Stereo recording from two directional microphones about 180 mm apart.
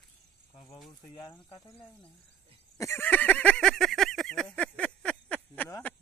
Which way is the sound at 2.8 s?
15° left (ahead or behind).